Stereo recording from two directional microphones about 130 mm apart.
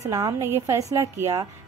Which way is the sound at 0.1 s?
25° right (ahead or behind).